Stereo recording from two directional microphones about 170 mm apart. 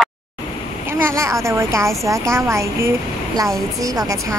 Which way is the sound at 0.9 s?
15° right (ahead or behind).